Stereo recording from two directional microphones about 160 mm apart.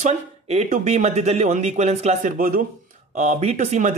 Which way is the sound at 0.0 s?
45° right (ahead or behind).